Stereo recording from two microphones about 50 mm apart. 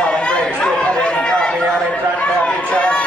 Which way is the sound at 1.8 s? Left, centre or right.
Left.